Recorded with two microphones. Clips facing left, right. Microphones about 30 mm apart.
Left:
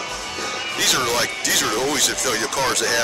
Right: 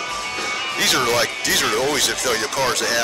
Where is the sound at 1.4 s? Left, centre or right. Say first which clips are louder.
Right 1 dB; centre.